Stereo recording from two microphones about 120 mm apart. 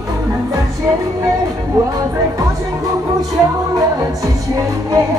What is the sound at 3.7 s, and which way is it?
Music, 30° right (ahead or behind).